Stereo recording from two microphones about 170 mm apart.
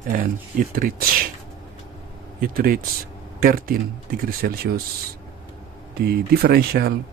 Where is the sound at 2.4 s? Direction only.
55° right (ahead or behind).